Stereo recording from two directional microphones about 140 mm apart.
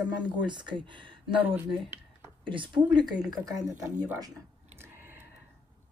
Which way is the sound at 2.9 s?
30° right (ahead or behind).